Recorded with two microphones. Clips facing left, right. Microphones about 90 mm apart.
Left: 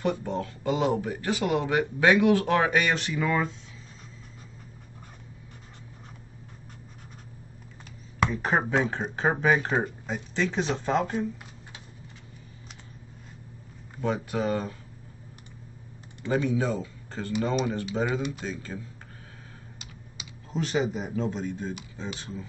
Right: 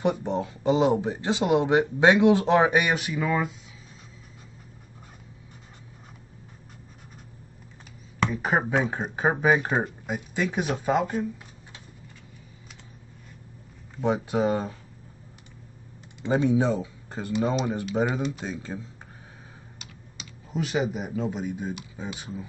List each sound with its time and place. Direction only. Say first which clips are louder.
0.0 s speech: right 3 dB; 20° right (ahead or behind)
8.3 s speech: right 3 dB; 10° right (ahead or behind)
14.0 s speech: right 4 dB; 20° right (ahead or behind)
16.2 s speech: right 3 dB; 20° right (ahead or behind)
20.5 s speech: even; 10° right (ahead or behind)